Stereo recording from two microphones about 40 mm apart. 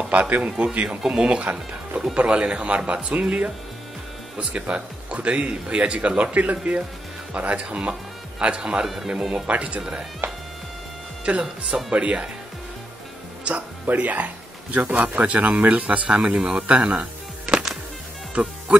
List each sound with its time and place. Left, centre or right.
0.1 s speech: right
0.8 s speech: centre; by 2.0 s right
2.1 s speech: right
4.5 s speech: right
9.3 s speech: right
9.8 s speech: centre
11.3 s speech: right
13.4 s music: right
13.9 s speech: right
15.2 s speech: right
16.6 s music: right